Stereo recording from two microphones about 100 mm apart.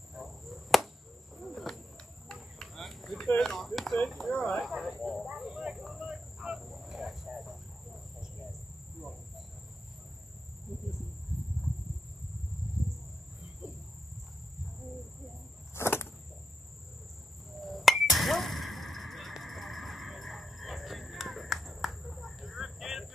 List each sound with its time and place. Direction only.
0.1 s chop: centre (ahead or behind)
1.5 s a sound: centre (ahead or behind)
3.3 s speech: 5° left (ahead or behind)
4.6 s cricket: centre (ahead or behind)
15.7 s vehicle: 25° left (ahead or behind)
17.6 s chink: centre (ahead or behind)